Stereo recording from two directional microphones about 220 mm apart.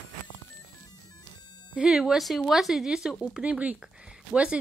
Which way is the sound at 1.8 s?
5° right (ahead or behind).